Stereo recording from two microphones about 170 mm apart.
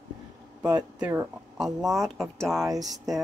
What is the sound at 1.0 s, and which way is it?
Speech, 5° right (ahead or behind).